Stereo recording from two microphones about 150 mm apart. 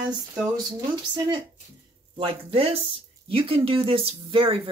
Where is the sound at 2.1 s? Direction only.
35° right (ahead or behind).